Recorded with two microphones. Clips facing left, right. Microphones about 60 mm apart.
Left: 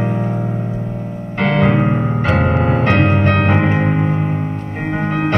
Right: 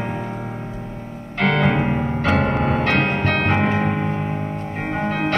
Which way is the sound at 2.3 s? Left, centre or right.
Centre.